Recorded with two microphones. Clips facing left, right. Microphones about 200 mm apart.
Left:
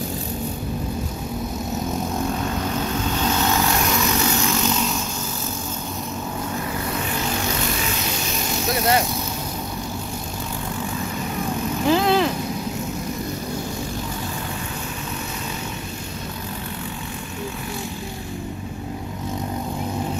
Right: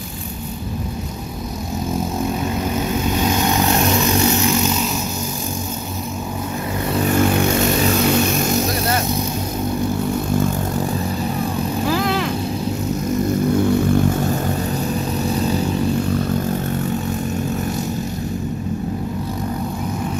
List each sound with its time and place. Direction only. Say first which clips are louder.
2.4 s vehicle: right 3 dB; 10° right (ahead or behind)
11.9 s vehicle: left 5 dB; 30° left (ahead or behind)